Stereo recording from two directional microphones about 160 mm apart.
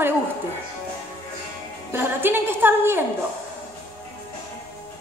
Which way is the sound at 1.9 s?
15° right (ahead or behind).